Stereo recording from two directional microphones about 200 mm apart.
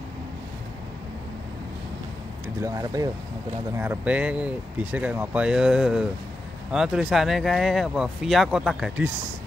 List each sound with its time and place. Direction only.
2.6 s speech: 15° right (ahead or behind)